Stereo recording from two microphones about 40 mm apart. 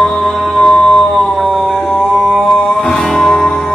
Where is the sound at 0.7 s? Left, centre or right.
Centre.